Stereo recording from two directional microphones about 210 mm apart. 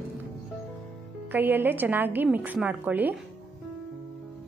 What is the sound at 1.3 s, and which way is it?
A woman's voice, 10° right (ahead or behind).